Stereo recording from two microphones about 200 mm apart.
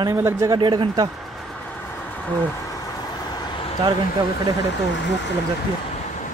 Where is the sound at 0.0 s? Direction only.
15° right (ahead or behind).